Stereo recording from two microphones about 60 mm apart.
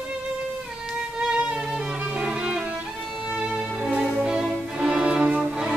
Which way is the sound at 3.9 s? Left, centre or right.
Centre.